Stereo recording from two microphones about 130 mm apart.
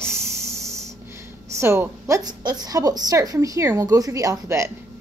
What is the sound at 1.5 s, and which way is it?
A woman's voice, 20° right (ahead or behind).